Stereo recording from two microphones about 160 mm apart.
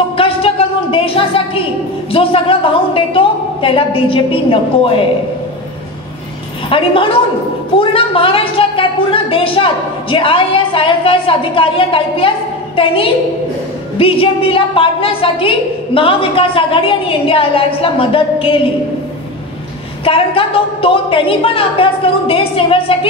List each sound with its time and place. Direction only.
0.2 s a sound: 35° left (ahead or behind)
2.1 s a woman's voice: 35° left (ahead or behind)
6.7 s a woman's voice: 35° left (ahead or behind)
20.1 s a woman's voice: 35° left (ahead or behind)